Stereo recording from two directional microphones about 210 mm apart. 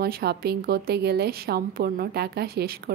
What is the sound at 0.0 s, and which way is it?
A woman's voice, 50° right (ahead or behind).